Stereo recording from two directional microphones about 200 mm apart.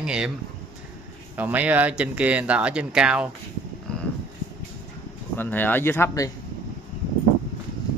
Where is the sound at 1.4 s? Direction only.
10° right (ahead or behind).